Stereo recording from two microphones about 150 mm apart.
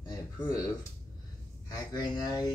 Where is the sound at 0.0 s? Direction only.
25° left (ahead or behind).